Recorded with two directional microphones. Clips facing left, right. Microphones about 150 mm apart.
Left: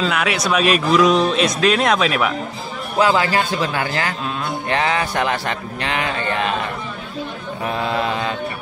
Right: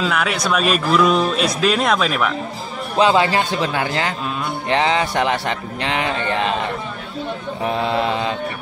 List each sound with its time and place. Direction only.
0.0 s speech: centre (ahead or behind)
3.0 s speech: 25° right (ahead or behind)
7.6 s speech: 25° right (ahead or behind)